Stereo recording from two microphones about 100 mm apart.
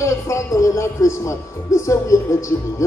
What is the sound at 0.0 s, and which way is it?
Speech, 30° left (ahead or behind).